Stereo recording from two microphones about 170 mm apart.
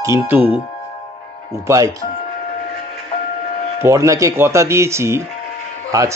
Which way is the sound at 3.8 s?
15° right (ahead or behind).